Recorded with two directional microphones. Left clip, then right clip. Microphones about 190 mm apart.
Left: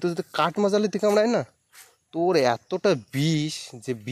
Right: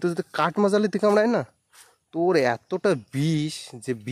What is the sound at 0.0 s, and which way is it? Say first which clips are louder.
Speech: even; 20° right (ahead or behind).